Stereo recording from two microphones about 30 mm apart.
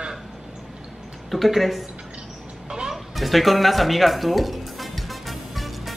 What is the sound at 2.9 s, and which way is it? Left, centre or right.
Music, centre.